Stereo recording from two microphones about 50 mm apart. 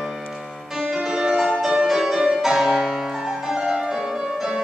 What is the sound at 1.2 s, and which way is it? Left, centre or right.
Music, centre.